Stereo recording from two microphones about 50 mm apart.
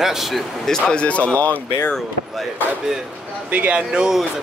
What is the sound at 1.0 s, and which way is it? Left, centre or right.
Speech, left.